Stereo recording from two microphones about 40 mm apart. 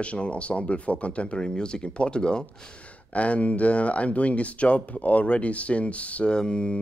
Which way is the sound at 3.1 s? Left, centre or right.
Left.